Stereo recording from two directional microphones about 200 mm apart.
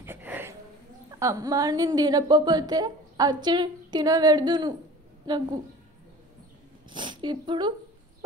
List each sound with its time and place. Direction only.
0.0 s a sound: 10° right (ahead or behind)
1.2 s a woman's voice: 15° right (ahead or behind)
6.9 s speech: 25° right (ahead or behind)